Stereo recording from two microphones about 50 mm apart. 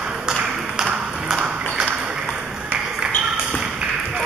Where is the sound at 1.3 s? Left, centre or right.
Centre.